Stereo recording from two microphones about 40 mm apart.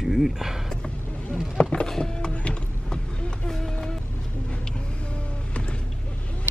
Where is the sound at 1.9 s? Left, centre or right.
Centre.